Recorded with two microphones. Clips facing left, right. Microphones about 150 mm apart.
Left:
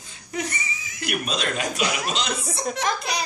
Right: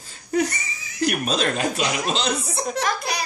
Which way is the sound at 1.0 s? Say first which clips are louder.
Right 5 dB; 40° right (ahead or behind).